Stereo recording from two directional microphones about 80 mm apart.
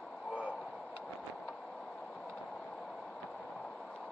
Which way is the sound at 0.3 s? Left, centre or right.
Centre.